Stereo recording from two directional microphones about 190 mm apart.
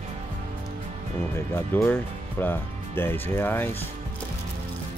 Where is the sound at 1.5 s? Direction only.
10° left (ahead or behind).